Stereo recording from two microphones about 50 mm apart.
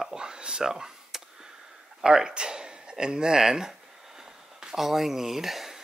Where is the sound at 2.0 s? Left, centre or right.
Centre.